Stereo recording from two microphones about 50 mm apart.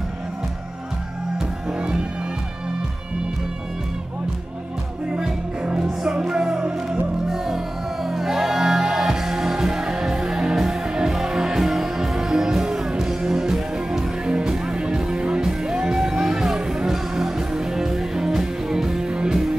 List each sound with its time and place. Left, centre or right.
1.7 s music: centre
5.1 s music: centre